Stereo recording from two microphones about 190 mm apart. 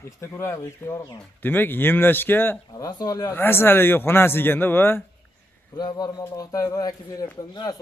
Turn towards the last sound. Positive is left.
turn(degrees=20)  # may be behind; listen again after turning